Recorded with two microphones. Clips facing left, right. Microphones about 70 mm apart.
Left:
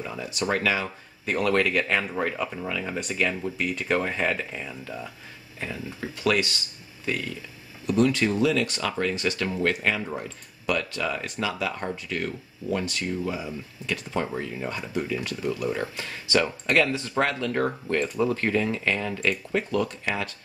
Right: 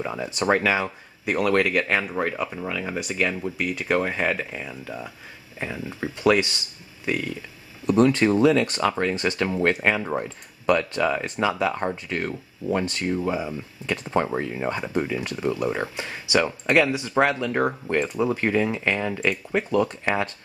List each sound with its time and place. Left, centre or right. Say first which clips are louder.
0.0 s speech: right 4 dB; right
0.8 s speech: right 3 dB; centre
5.9 s speech: right 5 dB; right
7.8 s speech: right 4 dB; right